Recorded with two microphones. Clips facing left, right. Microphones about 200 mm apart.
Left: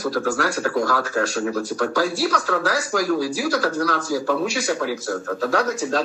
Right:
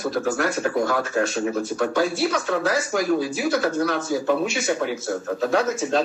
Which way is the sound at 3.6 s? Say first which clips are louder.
Even; 25° right (ahead or behind).